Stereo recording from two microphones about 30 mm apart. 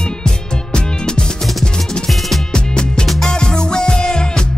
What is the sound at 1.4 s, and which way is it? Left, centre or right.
Music, centre.